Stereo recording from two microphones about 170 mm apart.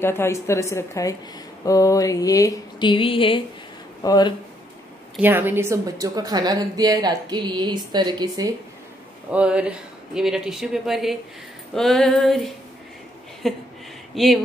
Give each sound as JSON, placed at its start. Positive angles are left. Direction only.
{"t": 0.0, "sound": "a woman's voice", "side_deg": 15}
{"t": 1.6, "sound": "a sound", "side_deg": 20}
{"t": 4.0, "sound": "speech", "side_deg": 20}
{"t": 5.1, "sound": "a woman's voice", "side_deg": -10}
{"t": 9.3, "sound": "speech", "side_deg": -5}